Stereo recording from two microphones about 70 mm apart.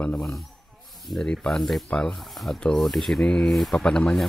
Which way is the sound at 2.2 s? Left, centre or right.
Centre.